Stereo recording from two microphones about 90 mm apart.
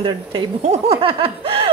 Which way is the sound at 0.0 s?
70° right (ahead or behind).